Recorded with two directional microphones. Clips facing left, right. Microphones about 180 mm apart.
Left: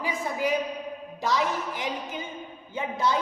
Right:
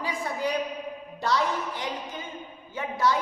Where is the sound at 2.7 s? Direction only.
20° left (ahead or behind).